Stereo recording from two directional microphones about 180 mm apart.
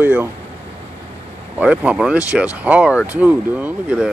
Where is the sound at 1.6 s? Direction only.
5° right (ahead or behind).